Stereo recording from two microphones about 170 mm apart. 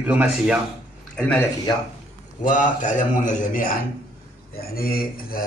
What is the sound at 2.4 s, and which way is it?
Speech, 45° left (ahead or behind).